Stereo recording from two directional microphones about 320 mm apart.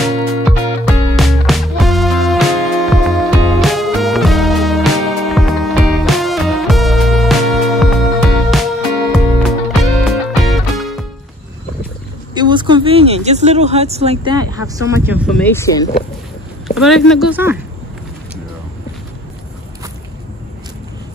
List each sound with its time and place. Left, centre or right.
0.0 s music: centre
12.4 s a sound: centre
14.8 s speech: centre
15.3 s speech: centre
16.6 s speech: centre